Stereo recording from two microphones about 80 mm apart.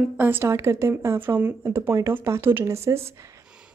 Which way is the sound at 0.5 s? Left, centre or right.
Right.